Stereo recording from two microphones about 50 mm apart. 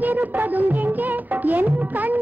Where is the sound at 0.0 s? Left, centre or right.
Right.